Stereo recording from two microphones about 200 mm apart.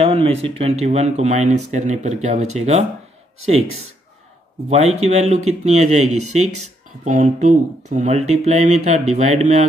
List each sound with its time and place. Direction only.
0.0 s speech: 30° right (ahead or behind)
4.6 s speech: 30° right (ahead or behind)